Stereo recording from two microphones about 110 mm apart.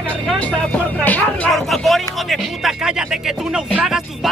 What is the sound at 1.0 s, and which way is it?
Speech, 15° left (ahead or behind).